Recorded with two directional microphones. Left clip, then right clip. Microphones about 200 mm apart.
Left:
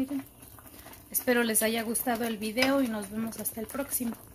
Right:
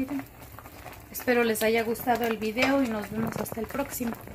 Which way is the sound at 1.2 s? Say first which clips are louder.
Right 3 dB; 30° left (ahead or behind).